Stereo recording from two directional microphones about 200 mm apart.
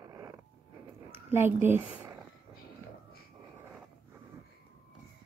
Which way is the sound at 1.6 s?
10° right (ahead or behind).